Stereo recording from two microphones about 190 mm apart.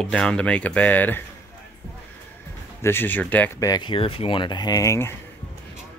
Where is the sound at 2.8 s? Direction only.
10° left (ahead or behind).